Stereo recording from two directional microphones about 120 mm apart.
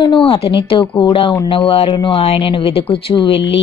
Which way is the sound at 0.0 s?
45° left (ahead or behind).